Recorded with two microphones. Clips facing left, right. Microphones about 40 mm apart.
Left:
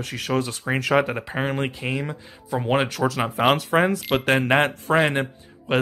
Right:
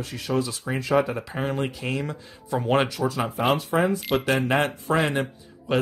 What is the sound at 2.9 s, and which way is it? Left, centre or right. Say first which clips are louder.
Speech: left 3 dB; left.